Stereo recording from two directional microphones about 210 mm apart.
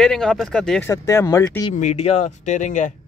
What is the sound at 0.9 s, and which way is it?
Speech, 15° left (ahead or behind).